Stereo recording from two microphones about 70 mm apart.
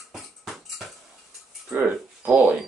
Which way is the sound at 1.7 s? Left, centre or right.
Right.